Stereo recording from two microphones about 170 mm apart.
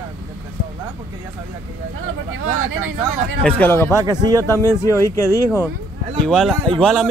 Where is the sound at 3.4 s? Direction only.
10° left (ahead or behind).